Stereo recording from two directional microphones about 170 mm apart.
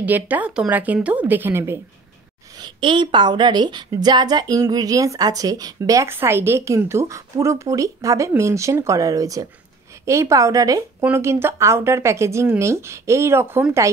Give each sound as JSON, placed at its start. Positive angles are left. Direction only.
{"t": 0.0, "sound": "a woman's voice", "side_deg": -10}
{"t": 2.5, "sound": "a woman's voice", "side_deg": -25}